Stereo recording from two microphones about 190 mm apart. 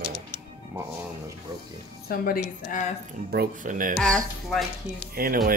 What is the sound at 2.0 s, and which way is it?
Speech, 50° left (ahead or behind).